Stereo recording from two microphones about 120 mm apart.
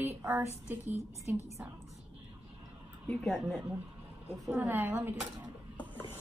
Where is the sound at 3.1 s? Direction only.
Centre (ahead or behind).